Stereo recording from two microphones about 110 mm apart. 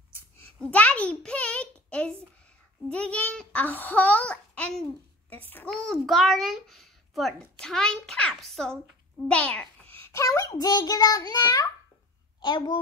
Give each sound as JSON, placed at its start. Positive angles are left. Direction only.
{"t": 0.6, "sound": "a sound", "side_deg": 15}
{"t": 2.9, "sound": "a child's voice", "side_deg": 10}
{"t": 5.9, "sound": "a child's voice", "side_deg": 0}
{"t": 9.3, "sound": "babbling", "side_deg": 10}
{"t": 10.2, "sound": "a child's voice", "side_deg": 30}